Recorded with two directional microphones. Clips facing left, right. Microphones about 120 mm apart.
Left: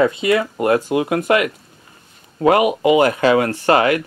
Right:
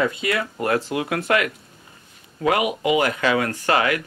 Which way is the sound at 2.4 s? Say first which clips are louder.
Left 7 dB; 35° left (ahead or behind).